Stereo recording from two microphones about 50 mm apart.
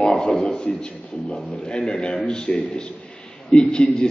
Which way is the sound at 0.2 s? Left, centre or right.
Centre.